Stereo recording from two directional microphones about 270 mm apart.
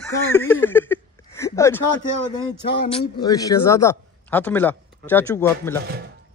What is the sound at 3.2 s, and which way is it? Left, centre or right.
A man's voice, centre.